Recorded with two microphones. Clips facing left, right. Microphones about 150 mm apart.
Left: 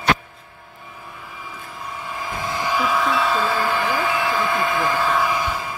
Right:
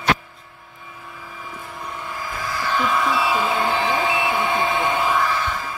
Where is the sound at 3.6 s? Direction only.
25° right (ahead or behind).